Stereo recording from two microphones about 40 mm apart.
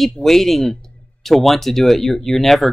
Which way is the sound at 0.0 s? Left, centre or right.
Centre.